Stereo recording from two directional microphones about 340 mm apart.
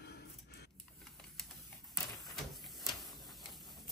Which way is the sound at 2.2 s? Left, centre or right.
Centre.